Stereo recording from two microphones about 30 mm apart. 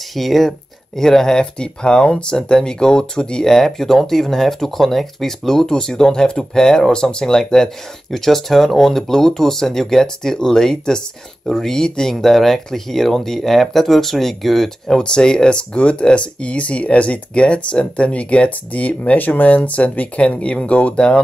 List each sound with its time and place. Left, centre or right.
0.1 s speech: centre; by 3.4 s left
3.4 s speech: centre
5.7 s speech: left; by 14.7 s centre
15.0 s speech: left
19.1 s speech: left